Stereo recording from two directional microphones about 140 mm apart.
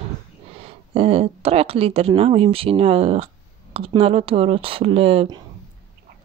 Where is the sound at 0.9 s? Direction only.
45° right (ahead or behind).